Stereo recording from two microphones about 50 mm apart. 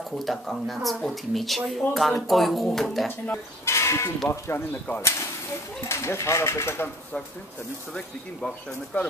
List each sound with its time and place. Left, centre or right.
0.2 s speech: centre
3.6 s speech: left
4.3 s speech: left
5.0 s speech: left
7.9 s speech: centre